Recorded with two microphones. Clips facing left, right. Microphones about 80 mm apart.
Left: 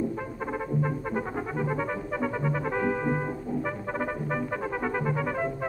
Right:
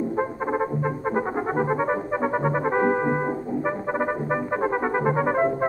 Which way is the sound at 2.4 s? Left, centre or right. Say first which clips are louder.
Right 7 dB; right.